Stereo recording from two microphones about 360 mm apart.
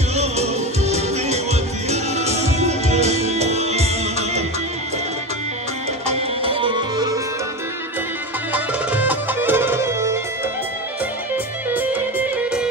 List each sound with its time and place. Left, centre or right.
0.1 s music: centre
6.0 s music: centre
8.5 s music: centre
11.7 s music: centre